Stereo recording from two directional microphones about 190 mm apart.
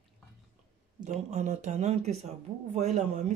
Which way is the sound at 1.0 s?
40° right (ahead or behind).